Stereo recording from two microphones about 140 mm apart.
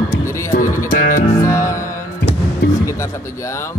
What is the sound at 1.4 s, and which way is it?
Speech, 20° left (ahead or behind).